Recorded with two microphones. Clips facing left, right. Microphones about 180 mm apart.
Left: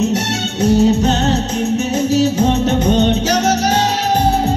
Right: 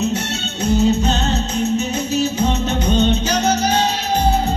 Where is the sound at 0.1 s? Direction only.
75° left (ahead or behind).